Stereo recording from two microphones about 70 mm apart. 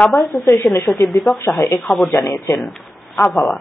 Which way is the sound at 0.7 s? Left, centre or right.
Left.